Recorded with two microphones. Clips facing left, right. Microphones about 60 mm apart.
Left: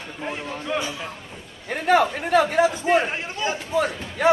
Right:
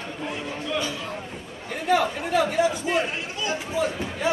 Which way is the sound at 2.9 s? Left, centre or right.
Left.